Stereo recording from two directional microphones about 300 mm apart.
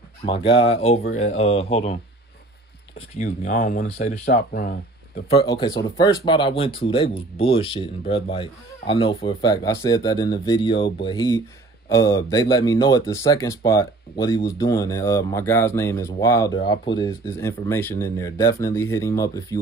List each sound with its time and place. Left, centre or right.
0.2 s speech: centre
3.2 s speech: left
5.3 s speech: centre